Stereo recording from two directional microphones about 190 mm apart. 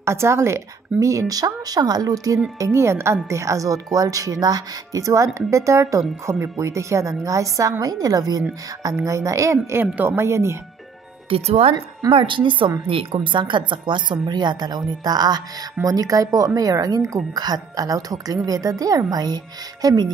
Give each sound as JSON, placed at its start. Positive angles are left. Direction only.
{"t": 0.0, "sound": "speech", "side_deg": -15}
{"t": 11.2, "sound": "speech", "side_deg": -30}